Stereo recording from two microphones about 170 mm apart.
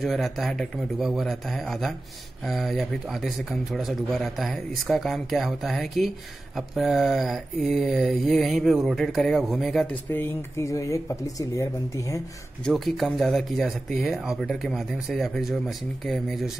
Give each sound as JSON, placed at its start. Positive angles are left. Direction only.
{"t": 0.0, "sound": "a man's voice", "side_deg": 0}
{"t": 10.1, "sound": "speech", "side_deg": 15}
{"t": 12.6, "sound": "a man's voice", "side_deg": 0}